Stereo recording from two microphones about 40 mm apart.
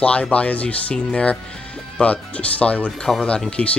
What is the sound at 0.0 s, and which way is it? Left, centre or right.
Speech, left.